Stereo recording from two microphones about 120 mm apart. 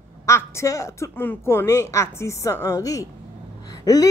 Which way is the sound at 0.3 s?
20° left (ahead or behind).